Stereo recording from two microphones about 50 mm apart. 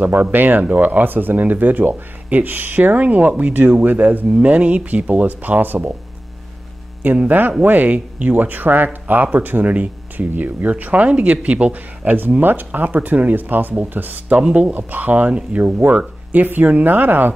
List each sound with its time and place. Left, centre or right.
0.0 s speech: right
4.3 s speech: right
7.0 s speech: right
14.4 s speech: right
14.8 s speech: right